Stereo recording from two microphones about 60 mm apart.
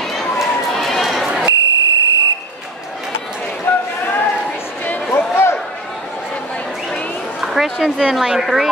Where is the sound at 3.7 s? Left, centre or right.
Left.